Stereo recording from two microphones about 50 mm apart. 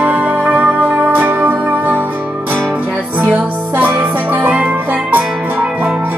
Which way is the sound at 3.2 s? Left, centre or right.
Right.